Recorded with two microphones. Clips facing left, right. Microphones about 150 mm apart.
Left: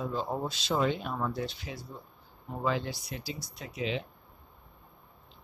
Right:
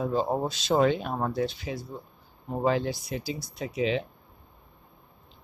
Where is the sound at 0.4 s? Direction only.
45° right (ahead or behind).